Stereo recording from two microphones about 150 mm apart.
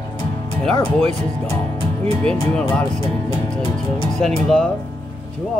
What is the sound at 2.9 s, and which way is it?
Speech, 30° left (ahead or behind).